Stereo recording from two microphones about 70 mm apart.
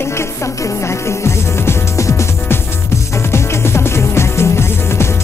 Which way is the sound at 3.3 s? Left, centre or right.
Left.